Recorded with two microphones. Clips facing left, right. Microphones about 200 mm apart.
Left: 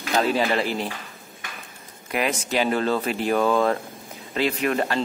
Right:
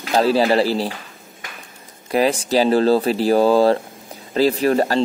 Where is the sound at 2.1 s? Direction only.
35° right (ahead or behind).